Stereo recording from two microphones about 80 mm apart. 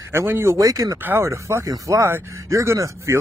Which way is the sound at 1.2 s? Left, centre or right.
Right.